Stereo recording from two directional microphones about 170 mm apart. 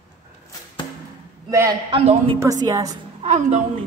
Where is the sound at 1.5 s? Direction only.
20° right (ahead or behind).